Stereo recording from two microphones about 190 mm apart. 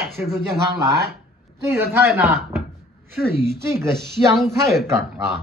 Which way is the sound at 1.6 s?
15° right (ahead or behind).